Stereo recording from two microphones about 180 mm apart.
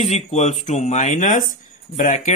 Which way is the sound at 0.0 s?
40° left (ahead or behind).